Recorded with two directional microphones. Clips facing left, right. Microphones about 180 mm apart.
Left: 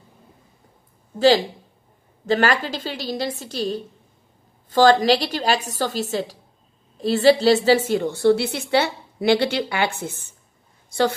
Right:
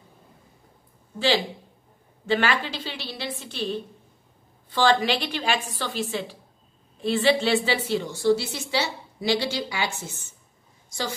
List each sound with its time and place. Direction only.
2.2 s a woman's voice: 40° left (ahead or behind); by 11.1 s 60° left (ahead or behind)